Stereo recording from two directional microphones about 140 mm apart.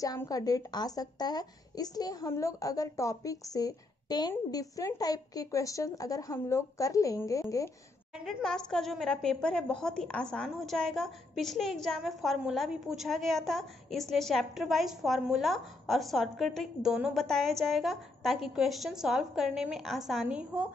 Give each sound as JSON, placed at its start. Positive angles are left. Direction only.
{"t": 0.0, "sound": "a woman's voice", "side_deg": 25}
{"t": 8.2, "sound": "a woman's voice", "side_deg": 0}